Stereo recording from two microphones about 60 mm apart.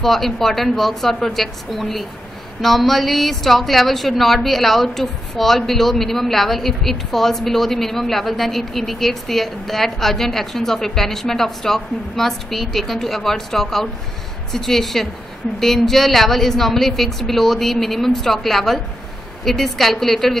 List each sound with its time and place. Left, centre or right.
0.0 s a woman's voice: centre